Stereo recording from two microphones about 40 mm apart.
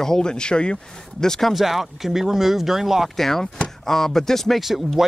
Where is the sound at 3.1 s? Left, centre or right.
Centre.